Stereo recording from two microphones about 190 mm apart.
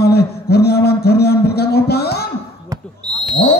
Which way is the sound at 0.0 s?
55° left (ahead or behind).